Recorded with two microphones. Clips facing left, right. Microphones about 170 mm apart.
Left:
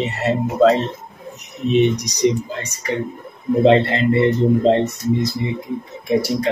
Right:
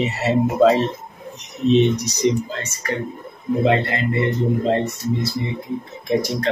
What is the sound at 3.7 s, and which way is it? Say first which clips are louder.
Speech: left 7 dB; 30° left (ahead or behind).